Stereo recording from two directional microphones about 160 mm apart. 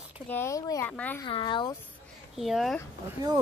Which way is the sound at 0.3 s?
15° left (ahead or behind).